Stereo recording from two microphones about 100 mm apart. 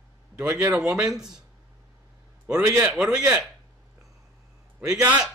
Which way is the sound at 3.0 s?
5° right (ahead or behind).